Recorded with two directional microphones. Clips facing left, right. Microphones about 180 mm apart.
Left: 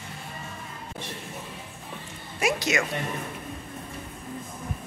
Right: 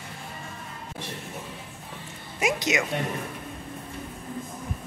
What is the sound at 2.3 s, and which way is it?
Music, 20° right (ahead or behind).